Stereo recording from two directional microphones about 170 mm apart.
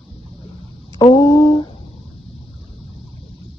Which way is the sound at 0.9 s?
25° left (ahead or behind).